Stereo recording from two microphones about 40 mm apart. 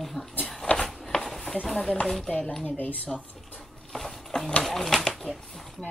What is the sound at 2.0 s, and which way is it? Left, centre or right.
Speech, centre.